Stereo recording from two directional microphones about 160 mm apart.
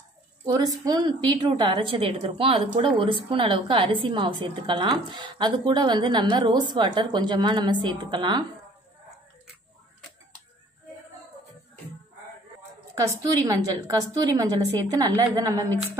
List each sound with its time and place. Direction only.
0.5 s a woman's voice: 25° right (ahead or behind)
12.9 s speech: 20° right (ahead or behind)